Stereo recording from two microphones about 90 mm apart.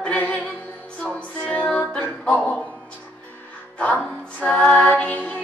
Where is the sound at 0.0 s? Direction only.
15° left (ahead or behind).